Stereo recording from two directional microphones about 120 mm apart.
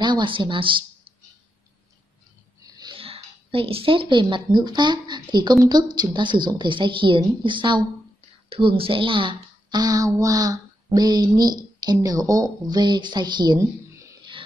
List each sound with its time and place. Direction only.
0.0 s speech: 40° right (ahead or behind)
2.6 s wheeze: 35° right (ahead or behind)
3.0 s speech: 50° right (ahead or behind)
13.6 s a sound: 25° right (ahead or behind)